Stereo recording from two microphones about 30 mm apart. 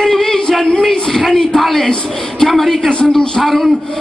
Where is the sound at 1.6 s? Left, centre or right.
Centre.